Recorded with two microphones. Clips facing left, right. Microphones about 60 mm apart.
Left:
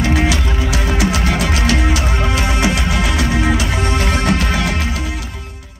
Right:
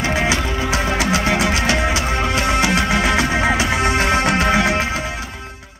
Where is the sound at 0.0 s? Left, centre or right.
Right.